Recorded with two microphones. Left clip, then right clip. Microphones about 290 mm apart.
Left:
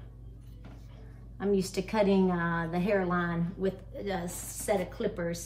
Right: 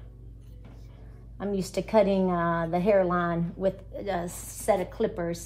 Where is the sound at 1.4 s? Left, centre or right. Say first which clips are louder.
Left 1 dB; centre.